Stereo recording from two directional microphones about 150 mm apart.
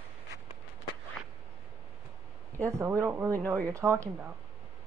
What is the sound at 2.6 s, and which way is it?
Speech, 20° right (ahead or behind).